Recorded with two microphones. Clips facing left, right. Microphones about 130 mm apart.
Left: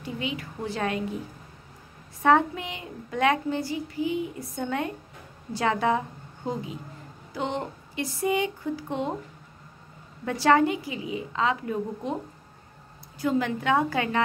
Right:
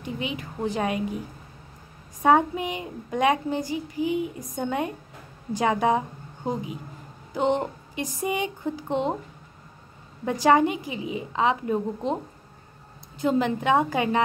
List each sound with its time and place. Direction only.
0.0 s a woman's voice: 20° right (ahead or behind)
2.2 s a woman's voice: 15° right (ahead or behind)
10.4 s a woman's voice: 15° right (ahead or behind)
13.2 s a woman's voice: 20° right (ahead or behind)